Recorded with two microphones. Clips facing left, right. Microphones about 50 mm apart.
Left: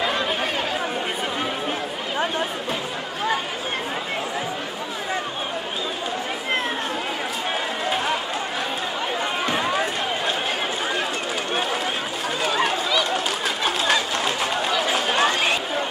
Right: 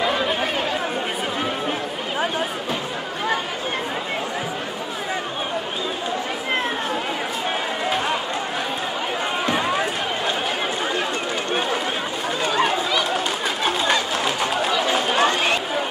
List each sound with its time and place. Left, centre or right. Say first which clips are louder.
0.0 s chatter: right 2 dB; centre
7.8 s run: right 1 dB; centre
9.5 s run: right 2 dB; centre
12.4 s run: right 2 dB; centre
13.7 s chatter: right 1 dB; centre